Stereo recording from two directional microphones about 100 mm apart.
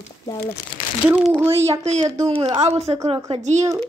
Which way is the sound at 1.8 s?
90° right.